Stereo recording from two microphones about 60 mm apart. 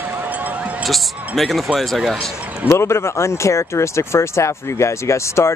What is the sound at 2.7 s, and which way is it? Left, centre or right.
Speech, left.